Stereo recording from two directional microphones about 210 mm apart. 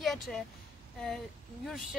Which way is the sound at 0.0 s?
Centre (ahead or behind).